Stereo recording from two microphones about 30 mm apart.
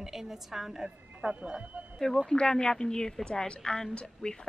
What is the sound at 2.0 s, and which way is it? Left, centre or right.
Speech, centre.